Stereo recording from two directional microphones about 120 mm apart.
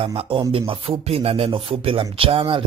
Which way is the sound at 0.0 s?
55° right (ahead or behind).